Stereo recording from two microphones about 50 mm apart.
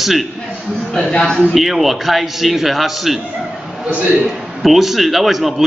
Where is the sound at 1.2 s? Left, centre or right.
Centre.